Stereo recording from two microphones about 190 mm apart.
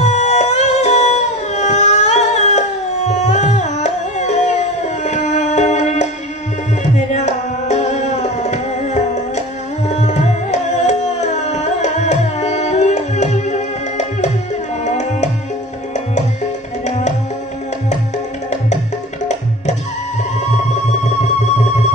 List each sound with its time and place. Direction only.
0.0 s music: 35° left (ahead or behind)
9.8 s tabla: 40° left (ahead or behind)
14.9 s music: 35° left (ahead or behind)